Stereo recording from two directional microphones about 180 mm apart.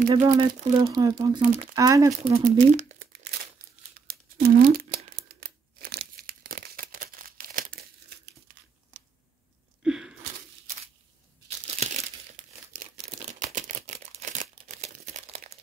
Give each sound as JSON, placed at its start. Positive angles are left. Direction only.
{"t": 0.1, "sound": "speech", "side_deg": -20}
{"t": 2.4, "sound": "crumpling", "side_deg": -40}
{"t": 4.1, "sound": "a sound", "side_deg": -60}
{"t": 4.7, "sound": "crumpling", "side_deg": -55}
{"t": 9.8, "sound": "a sound", "side_deg": -5}
{"t": 11.6, "sound": "crumpling", "side_deg": -40}